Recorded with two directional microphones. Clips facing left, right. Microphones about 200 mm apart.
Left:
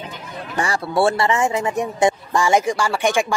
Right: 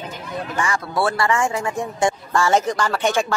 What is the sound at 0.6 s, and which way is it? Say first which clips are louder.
Speech: left 4 dB; 30° left (ahead or behind).